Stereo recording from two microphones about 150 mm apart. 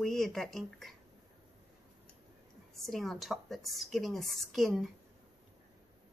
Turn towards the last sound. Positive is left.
turn(degrees=0)  # may be behind; listen again after turning